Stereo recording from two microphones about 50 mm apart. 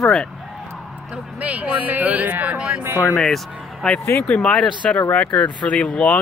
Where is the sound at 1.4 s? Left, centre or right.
Right.